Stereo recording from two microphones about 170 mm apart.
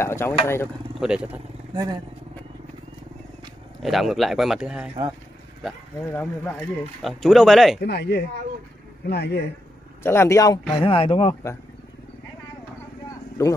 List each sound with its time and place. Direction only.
0.0 s speech: 15° left (ahead or behind)
0.9 s speech: 5° right (ahead or behind)
3.8 s speech: centre (ahead or behind)
6.1 s speech: 10° left (ahead or behind)
7.8 s a woman's voice: 75° left (ahead or behind)
10.0 s speech: 15° left (ahead or behind)
10.7 s speech: 30° left (ahead or behind)
13.4 s speech: 15° left (ahead or behind)